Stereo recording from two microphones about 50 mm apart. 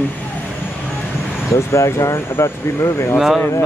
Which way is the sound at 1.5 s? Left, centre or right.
Left.